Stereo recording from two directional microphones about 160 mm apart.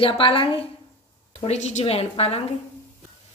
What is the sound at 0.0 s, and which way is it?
A woman's voice, 35° left (ahead or behind).